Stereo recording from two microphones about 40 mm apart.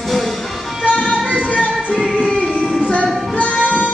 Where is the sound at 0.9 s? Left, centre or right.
Left.